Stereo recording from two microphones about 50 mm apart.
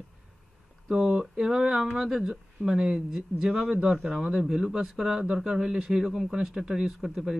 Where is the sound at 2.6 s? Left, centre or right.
Centre.